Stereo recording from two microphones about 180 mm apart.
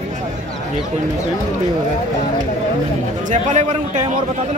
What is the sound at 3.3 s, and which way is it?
Speech, 40° right (ahead or behind).